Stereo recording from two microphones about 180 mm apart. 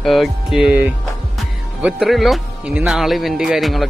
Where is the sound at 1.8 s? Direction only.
5° right (ahead or behind).